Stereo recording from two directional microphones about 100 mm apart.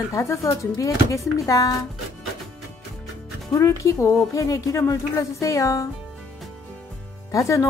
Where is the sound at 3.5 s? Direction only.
30° left (ahead or behind).